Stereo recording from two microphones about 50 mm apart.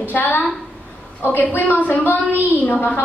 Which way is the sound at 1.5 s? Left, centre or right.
Left.